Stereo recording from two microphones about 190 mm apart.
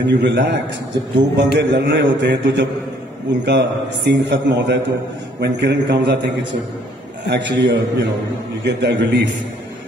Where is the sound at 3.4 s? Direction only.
65° right (ahead or behind).